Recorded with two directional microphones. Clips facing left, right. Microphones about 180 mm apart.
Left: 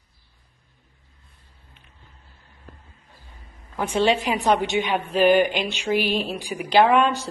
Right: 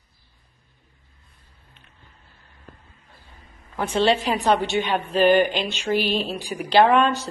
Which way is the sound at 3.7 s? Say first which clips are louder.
Even; 10° left (ahead or behind).